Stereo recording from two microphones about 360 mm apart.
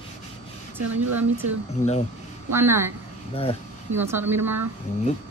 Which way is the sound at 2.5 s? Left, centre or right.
Centre.